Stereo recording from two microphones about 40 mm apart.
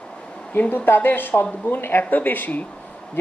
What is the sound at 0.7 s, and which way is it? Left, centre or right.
Speech, left.